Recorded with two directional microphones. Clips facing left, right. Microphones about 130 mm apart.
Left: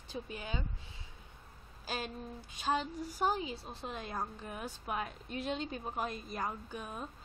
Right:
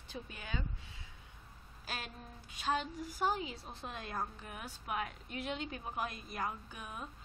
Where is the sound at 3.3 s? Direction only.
30° left (ahead or behind).